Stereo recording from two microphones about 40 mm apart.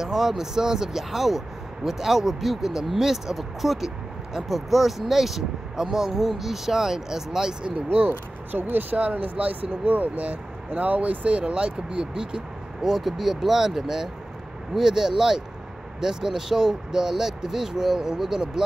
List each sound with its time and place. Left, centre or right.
0.0 s speech: centre
8.1 s speech: right
8.9 s speech: right
12.9 s speech: centre